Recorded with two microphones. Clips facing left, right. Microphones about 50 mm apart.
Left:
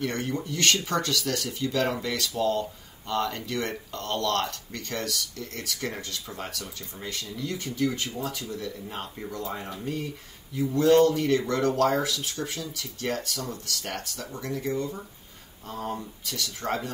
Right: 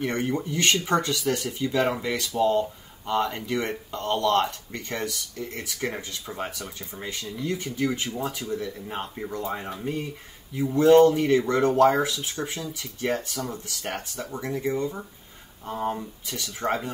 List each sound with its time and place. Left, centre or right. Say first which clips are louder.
0.0 s speech: right 3 dB; centre